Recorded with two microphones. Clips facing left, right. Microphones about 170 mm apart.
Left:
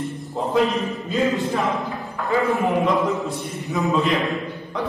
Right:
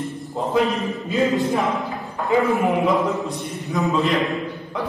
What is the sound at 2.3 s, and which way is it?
Speech, 20° right (ahead or behind).